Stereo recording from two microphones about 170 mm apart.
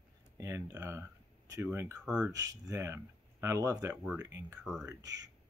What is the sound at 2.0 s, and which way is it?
Speech, 5° right (ahead or behind).